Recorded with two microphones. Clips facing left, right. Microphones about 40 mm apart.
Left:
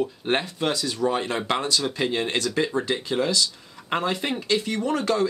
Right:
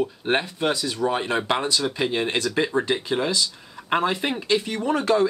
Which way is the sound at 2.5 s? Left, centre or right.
Centre.